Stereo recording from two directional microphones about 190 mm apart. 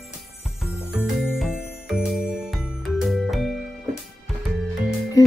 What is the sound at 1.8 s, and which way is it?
Jingle bell, 5° right (ahead or behind).